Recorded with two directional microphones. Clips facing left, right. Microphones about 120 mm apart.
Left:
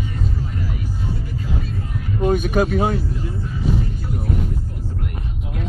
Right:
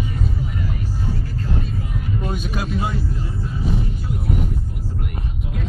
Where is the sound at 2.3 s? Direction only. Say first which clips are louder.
Left 8 dB; 50° left (ahead or behind).